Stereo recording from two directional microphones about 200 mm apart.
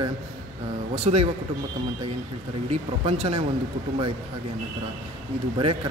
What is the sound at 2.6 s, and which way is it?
Speech, 30° right (ahead or behind).